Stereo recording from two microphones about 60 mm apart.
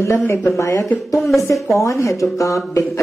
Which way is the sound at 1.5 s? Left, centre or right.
Left.